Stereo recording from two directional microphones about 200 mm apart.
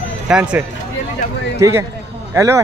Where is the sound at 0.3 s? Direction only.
5° right (ahead or behind).